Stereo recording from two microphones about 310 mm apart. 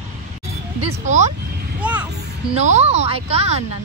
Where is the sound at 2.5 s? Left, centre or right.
Right.